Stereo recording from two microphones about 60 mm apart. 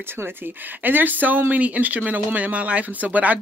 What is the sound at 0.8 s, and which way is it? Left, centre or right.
Speech, right.